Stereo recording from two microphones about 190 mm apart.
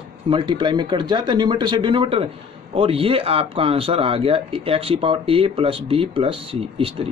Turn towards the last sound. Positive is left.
turn(degrees=-30)  # may be behind; listen again after turning